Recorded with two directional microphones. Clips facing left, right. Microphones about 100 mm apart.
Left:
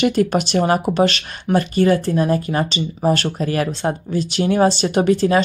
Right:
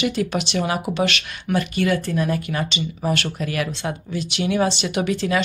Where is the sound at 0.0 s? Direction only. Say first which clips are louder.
Left 6 dB; 45° left (ahead or behind).